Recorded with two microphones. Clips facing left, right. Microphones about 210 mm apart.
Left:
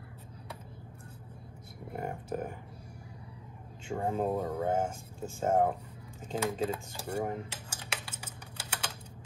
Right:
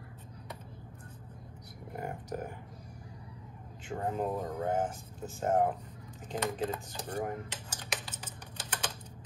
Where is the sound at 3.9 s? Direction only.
25° left (ahead or behind).